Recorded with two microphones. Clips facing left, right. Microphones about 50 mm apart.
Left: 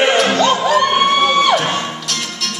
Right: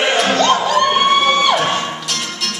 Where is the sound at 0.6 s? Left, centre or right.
Centre.